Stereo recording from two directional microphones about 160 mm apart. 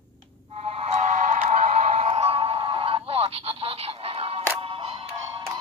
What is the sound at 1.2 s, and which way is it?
Music, 50° right (ahead or behind).